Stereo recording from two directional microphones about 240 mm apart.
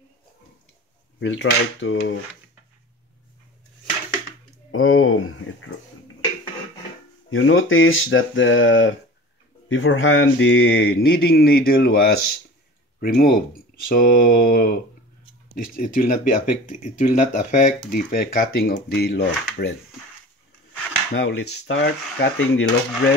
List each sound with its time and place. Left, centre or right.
1.2 s dishes: left
4.6 s speech: left
7.2 s speech: left
9.7 s mantra: left
21.1 s dishes: left